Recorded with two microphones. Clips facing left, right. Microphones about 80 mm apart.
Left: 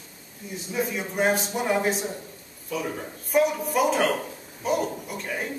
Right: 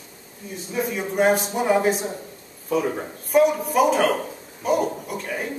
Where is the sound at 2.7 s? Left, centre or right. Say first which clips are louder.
Right 7 dB; right.